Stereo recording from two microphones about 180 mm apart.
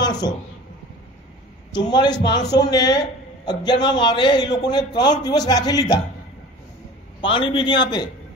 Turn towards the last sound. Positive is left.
turn(degrees=25)  # may be behind; listen again after turning